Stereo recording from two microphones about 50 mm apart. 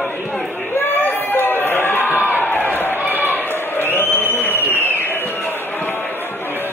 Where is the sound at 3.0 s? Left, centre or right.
Right.